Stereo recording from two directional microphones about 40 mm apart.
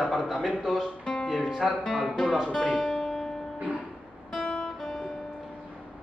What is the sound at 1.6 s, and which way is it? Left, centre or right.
Speech, centre.